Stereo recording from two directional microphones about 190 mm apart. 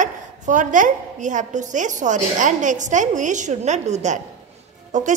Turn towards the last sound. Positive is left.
turn(degrees=-40)  # may be behind; listen again after turning